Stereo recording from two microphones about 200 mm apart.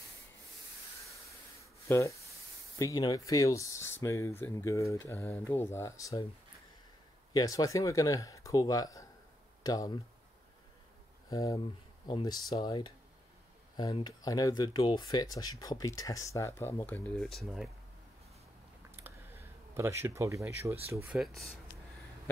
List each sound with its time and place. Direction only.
1.6 s a sound: 15° left (ahead or behind)
2.8 s speech: 15° left (ahead or behind)
7.3 s speech: 15° left (ahead or behind)
11.2 s speech: 15° left (ahead or behind); by 17.6 s centre (ahead or behind)
18.9 s a sound: 10° right (ahead or behind)
20.9 s speech: 5° right (ahead or behind)